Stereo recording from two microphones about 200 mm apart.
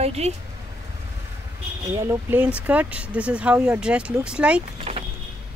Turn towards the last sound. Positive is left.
turn(degrees=-30)  # may be behind; listen again after turning